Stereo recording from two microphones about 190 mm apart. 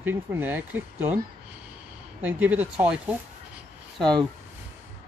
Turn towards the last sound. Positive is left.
turn(degrees=-25)  # may be behind; listen again after turning